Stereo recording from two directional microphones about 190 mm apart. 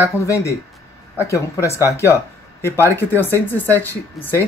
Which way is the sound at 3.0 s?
10° left (ahead or behind).